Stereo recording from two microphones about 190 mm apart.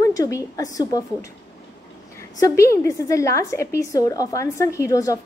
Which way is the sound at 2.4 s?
15° left (ahead or behind).